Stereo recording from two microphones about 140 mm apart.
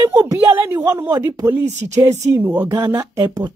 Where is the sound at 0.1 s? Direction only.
20° right (ahead or behind).